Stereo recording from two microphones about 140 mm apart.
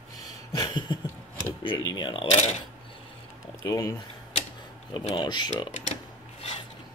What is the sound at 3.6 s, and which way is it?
Speech, 25° left (ahead or behind).